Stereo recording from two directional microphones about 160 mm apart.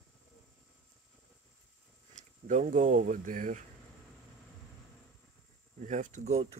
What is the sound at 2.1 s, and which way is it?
Speech, 50° right (ahead or behind).